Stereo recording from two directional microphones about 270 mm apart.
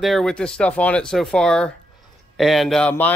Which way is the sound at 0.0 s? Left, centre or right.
Centre.